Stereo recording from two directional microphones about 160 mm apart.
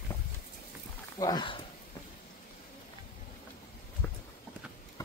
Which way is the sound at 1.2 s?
25° left (ahead or behind).